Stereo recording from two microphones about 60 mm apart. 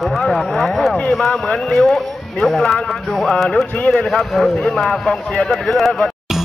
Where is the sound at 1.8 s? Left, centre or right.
Centre.